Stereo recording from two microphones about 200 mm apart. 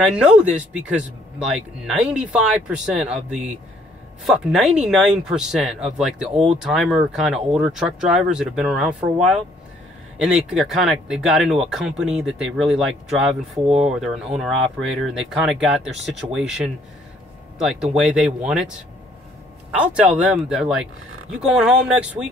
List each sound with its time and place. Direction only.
0.0 s speech: 5° right (ahead or behind)
10.1 s speech: 5° right (ahead or behind)
19.7 s speech: 5° right (ahead or behind)